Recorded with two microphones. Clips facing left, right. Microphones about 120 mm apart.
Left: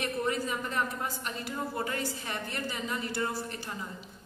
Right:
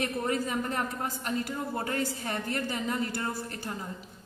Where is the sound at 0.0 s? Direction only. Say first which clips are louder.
Right 1 dB; 45° right (ahead or behind).